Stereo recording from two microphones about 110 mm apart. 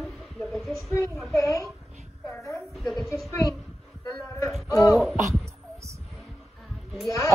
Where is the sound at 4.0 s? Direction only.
30° left (ahead or behind).